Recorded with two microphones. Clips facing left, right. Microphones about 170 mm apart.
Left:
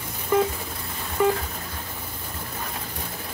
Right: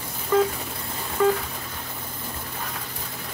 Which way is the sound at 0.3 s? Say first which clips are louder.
Right 1 dB; 20° left (ahead or behind).